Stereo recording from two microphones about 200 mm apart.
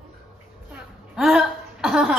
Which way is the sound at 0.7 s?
Centre (ahead or behind).